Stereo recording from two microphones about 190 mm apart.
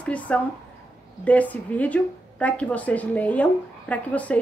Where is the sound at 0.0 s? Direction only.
5° left (ahead or behind).